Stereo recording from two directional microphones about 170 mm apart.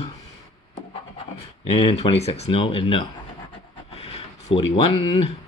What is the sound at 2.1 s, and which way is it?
Speech, 35° left (ahead or behind).